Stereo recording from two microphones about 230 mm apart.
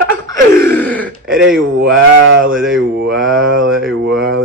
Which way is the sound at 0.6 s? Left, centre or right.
Centre.